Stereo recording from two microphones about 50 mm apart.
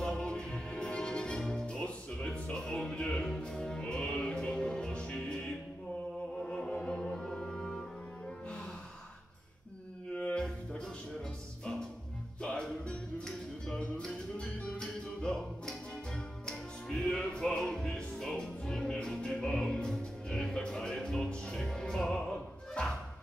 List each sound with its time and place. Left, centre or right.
0.0 s music: centre
2.5 s music: centre
6.4 s music: centre
10.3 s music: centre
12.4 s music: centre